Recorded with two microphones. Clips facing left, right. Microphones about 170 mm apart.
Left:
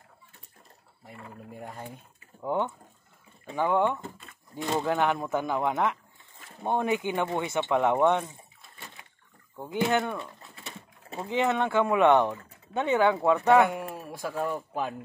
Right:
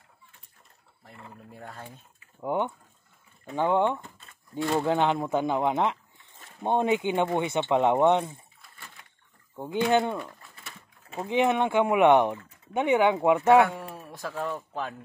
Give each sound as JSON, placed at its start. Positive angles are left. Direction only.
{"t": 1.6, "sound": "speech", "side_deg": 15}
{"t": 2.4, "sound": "speech", "side_deg": -15}
{"t": 4.6, "sound": "speech", "side_deg": 20}
{"t": 4.8, "sound": "speech", "side_deg": -20}
{"t": 8.6, "sound": "door", "side_deg": 20}
{"t": 9.8, "sound": "speech", "side_deg": -20}
{"t": 10.4, "sound": "pigeon", "side_deg": 20}
{"t": 11.2, "sound": "speech", "side_deg": -20}
{"t": 13.9, "sound": "speech", "side_deg": 10}